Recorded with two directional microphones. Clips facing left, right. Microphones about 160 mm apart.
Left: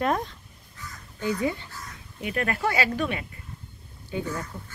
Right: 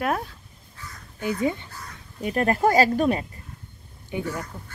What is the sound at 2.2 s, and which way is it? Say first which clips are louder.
Speech: right 6 dB; 40° right (ahead or behind).